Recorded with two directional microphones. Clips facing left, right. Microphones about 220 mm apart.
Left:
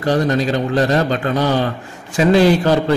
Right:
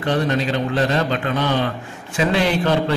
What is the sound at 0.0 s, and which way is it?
A man's voice, 40° left (ahead or behind).